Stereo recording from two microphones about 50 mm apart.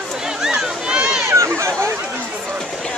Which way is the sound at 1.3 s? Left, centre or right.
Right.